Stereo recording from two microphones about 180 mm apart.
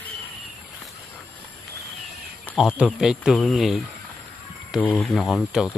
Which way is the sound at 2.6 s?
5° right (ahead or behind).